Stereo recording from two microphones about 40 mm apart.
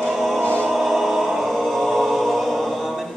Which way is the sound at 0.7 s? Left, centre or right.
Centre.